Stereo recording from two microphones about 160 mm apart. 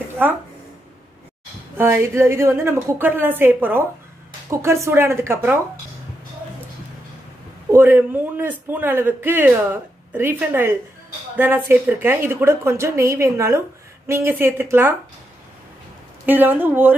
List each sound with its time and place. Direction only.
0.2 s a man's voice: 10° right (ahead or behind)
1.8 s a man's voice: 15° right (ahead or behind)
7.7 s a man's voice: 15° right (ahead or behind)
16.3 s a man's voice: 10° right (ahead or behind)